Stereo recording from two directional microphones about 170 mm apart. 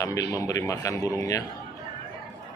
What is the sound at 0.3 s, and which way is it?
A man's voice, 20° left (ahead or behind).